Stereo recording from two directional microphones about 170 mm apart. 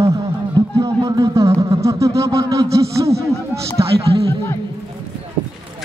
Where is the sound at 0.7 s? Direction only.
20° right (ahead or behind).